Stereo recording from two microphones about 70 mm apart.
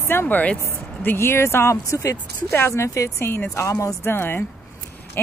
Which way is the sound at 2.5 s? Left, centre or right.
Left.